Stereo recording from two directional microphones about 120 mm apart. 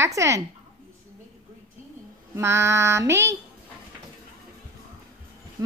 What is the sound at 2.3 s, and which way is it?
Child singing, 20° right (ahead or behind).